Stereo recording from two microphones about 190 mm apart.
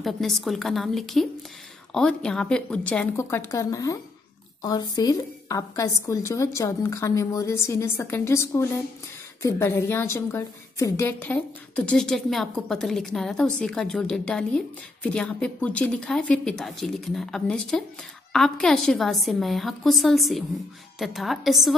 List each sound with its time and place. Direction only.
0.0 s a woman's voice: centre (ahead or behind)